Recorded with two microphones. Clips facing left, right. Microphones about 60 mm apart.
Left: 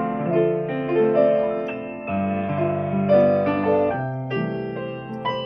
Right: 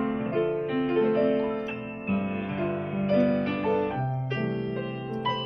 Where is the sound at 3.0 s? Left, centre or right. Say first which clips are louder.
Left 7 dB; left.